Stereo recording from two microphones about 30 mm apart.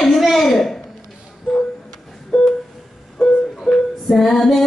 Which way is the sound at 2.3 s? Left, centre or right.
Centre.